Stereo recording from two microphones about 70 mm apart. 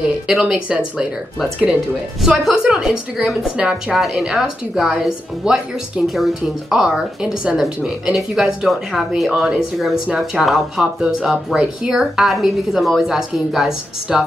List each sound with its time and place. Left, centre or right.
0.3 s speech: centre
2.2 s speech: centre